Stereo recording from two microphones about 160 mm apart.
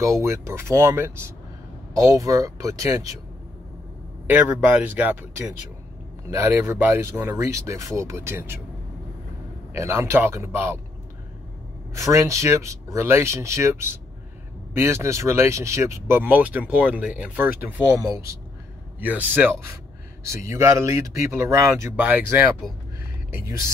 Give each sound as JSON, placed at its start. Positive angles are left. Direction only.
{"t": 0.0, "sound": "speech", "side_deg": -20}
{"t": 4.3, "sound": "speech", "side_deg": -10}
{"t": 6.3, "sound": "speech", "side_deg": -15}
{"t": 9.8, "sound": "speech", "side_deg": -15}
{"t": 11.9, "sound": "speech", "side_deg": -20}